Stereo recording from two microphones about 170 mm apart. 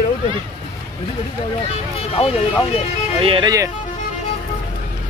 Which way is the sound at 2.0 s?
35° left (ahead or behind).